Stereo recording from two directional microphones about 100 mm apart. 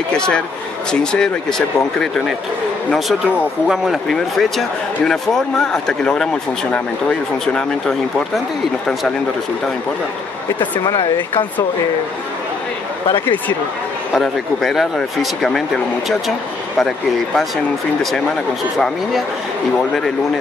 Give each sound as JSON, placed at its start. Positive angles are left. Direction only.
{"t": 0.9, "sound": "speech", "side_deg": 10}
{"t": 3.6, "sound": "speech", "side_deg": -5}
{"t": 11.0, "sound": "speech", "side_deg": 55}
{"t": 14.1, "sound": "speech", "side_deg": 5}